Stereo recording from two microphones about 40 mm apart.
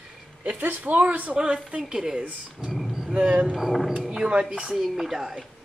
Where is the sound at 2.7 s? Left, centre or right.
Centre.